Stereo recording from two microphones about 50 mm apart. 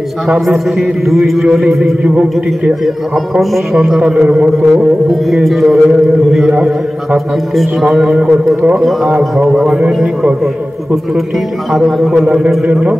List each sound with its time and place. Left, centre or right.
0.3 s a man's voice: centre
2.0 s a man's voice: right
3.3 s a man's voice: centre
7.8 s a man's voice: centre
9.5 s a man's voice: centre
11.7 s a man's voice: centre